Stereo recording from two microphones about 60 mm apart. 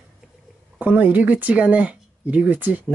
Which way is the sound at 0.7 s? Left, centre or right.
Right.